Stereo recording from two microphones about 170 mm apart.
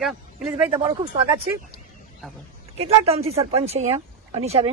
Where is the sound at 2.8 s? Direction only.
35° right (ahead or behind).